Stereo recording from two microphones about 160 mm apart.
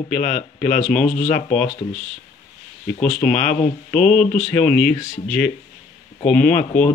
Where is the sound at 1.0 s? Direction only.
50° left (ahead or behind).